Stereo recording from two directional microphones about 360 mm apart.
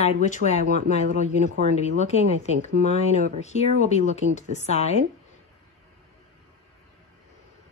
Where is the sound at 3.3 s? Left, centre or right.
Centre.